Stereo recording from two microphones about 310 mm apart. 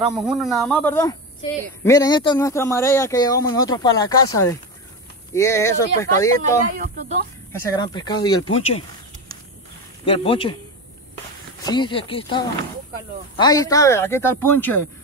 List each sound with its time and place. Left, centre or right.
0.0 s speech: centre
5.3 s speech: centre
6.8 s speech: right
7.6 s speech: centre
10.0 s speech: centre
11.6 s speech: centre